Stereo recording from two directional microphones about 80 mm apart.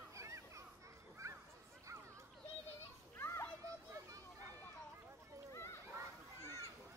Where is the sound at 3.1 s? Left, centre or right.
Left.